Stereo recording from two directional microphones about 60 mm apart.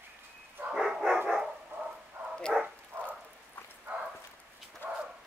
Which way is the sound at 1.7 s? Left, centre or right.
Right.